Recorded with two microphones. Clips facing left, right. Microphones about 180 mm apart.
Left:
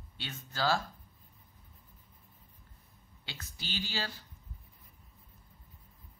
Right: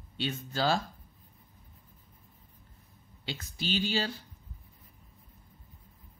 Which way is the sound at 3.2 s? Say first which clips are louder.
Right 10 dB; 20° right (ahead or behind).